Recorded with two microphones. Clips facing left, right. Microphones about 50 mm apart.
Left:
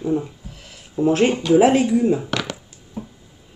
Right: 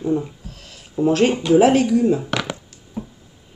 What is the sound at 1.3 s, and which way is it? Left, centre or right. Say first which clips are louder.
Speech: even; centre.